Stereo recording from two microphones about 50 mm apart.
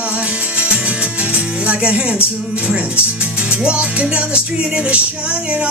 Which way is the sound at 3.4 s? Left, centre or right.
Right.